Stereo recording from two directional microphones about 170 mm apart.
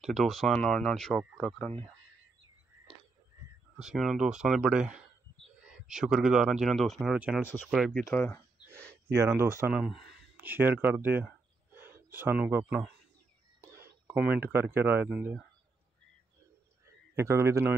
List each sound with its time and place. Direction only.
0.0 s speech: centre (ahead or behind)
3.7 s speech: centre (ahead or behind)
8.1 s speech: 15° left (ahead or behind)
9.4 s speech: 15° right (ahead or behind)
9.8 s speech: centre (ahead or behind)
17.1 s speech: 15° right (ahead or behind)